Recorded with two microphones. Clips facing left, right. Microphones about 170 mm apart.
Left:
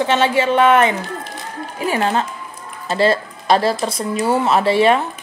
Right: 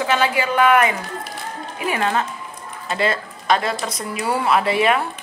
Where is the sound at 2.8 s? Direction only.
30° left (ahead or behind).